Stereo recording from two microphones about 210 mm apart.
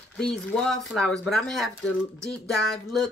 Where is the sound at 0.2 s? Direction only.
Centre (ahead or behind).